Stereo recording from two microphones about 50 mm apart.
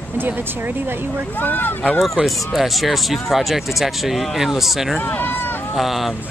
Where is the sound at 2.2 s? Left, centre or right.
Centre.